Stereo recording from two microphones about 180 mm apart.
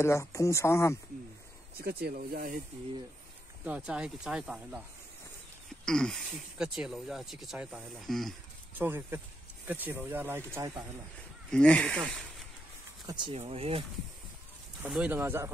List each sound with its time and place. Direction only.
0.0 s speech: 15° left (ahead or behind)
1.8 s speech: 55° right (ahead or behind)
3.6 s speech: 5° right (ahead or behind)
5.9 s speech: 5° left (ahead or behind)
8.7 s speech: 10° right (ahead or behind)
11.5 s speech: 5° left (ahead or behind)
13.0 s speech: 25° right (ahead or behind)
14.8 s speech: 5° right (ahead or behind)